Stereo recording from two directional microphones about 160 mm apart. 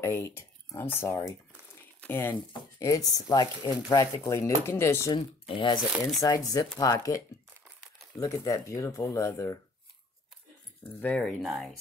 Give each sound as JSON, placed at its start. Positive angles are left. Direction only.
{"t": 0.0, "sound": "speech", "side_deg": 15}
{"t": 2.5, "sound": "a sound", "side_deg": 20}
{"t": 3.1, "sound": "speech", "side_deg": 25}
{"t": 5.1, "sound": "speech", "side_deg": 30}
{"t": 5.9, "sound": "speech", "side_deg": 0}
{"t": 6.2, "sound": "speech", "side_deg": 20}
{"t": 8.2, "sound": "speech", "side_deg": 20}
{"t": 10.8, "sound": "speech", "side_deg": 10}